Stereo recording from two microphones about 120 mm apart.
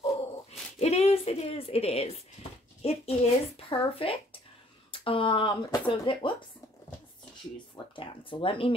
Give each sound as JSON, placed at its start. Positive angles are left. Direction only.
{"t": 0.0, "sound": "a sound", "side_deg": 60}
{"t": 2.8, "sound": "speech", "side_deg": 55}
{"t": 7.7, "sound": "speech", "side_deg": 45}